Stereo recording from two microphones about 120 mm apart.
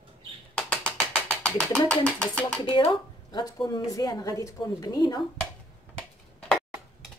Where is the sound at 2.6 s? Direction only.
40° left (ahead or behind).